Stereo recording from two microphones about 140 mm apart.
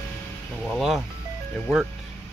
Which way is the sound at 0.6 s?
Centre (ahead or behind).